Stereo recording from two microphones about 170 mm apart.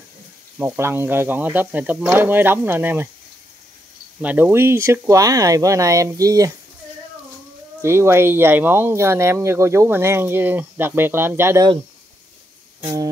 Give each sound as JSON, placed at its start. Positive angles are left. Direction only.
{"t": 0.6, "sound": "speech", "side_deg": -15}
{"t": 4.2, "sound": "speech", "side_deg": -10}
{"t": 7.8, "sound": "speech", "side_deg": -15}
{"t": 12.8, "sound": "speech", "side_deg": -20}